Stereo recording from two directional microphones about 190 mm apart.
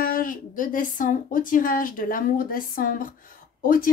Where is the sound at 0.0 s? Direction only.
45° left (ahead or behind).